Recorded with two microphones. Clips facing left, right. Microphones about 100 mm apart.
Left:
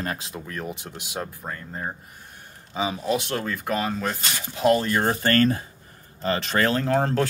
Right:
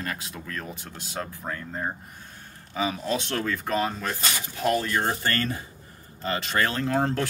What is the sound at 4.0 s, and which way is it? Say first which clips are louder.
Speech: left 1 dB; 20° left (ahead or behind).